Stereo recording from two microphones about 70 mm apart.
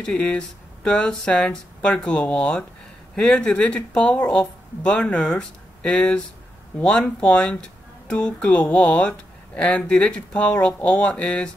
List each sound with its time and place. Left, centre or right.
0.0 s speech: centre